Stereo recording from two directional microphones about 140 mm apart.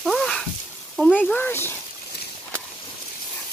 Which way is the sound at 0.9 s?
5° left (ahead or behind).